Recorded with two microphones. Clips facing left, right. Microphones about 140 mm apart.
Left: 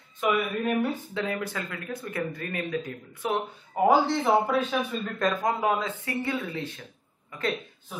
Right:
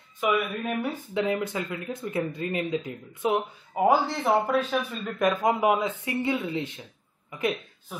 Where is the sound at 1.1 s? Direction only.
20° right (ahead or behind); by 5.1 s centre (ahead or behind).